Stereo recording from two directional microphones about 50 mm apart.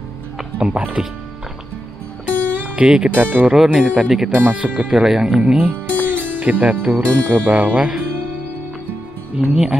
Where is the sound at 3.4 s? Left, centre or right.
Centre.